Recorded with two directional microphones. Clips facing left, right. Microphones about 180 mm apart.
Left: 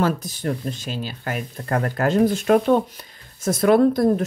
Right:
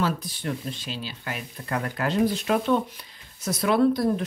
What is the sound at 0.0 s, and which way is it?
Speech, 45° left (ahead or behind).